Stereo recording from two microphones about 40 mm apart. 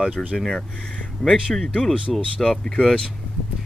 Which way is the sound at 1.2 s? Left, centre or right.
Centre.